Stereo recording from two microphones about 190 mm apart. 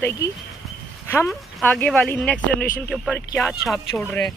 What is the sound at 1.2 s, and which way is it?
Speech, 10° left (ahead or behind).